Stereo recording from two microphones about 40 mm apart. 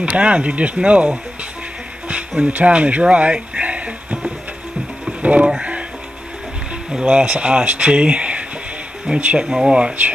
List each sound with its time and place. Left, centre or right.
0.0 s speech: right
2.0 s music: right
2.7 s a sound: right
5.2 s music: right
6.9 s speech: right
9.1 s speech: right